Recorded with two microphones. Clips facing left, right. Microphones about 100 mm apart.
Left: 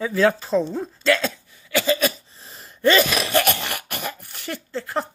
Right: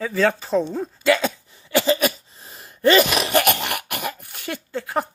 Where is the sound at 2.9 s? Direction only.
15° right (ahead or behind).